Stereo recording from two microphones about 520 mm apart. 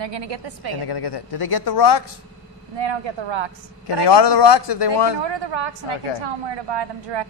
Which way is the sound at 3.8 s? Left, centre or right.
Left.